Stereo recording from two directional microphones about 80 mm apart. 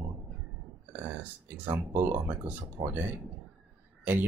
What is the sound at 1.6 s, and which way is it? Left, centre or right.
Speech, right.